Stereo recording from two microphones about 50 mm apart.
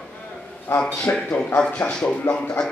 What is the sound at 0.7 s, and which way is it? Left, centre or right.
Speech, left.